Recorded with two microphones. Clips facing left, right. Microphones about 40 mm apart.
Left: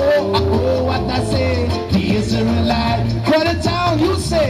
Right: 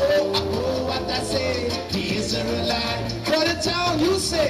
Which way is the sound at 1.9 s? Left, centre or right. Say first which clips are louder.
Left 7 dB; left.